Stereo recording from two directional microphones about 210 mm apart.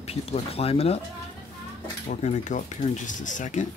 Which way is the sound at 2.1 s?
35° left (ahead or behind).